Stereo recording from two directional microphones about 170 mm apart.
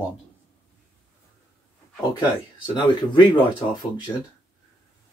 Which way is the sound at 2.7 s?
25° left (ahead or behind).